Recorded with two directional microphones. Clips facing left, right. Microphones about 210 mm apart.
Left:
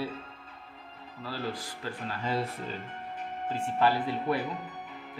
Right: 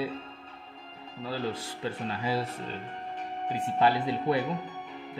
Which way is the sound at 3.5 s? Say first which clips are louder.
Right 1 dB; 15° right (ahead or behind).